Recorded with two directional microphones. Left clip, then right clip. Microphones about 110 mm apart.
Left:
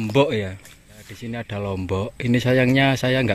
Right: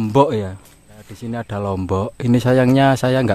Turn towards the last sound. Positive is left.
turn(degrees=-40)  # may be behind; listen again after turning